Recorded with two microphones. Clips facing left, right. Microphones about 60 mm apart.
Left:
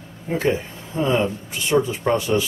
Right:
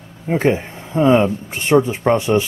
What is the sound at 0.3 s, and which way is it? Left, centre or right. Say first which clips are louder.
Speech: right 5 dB; right.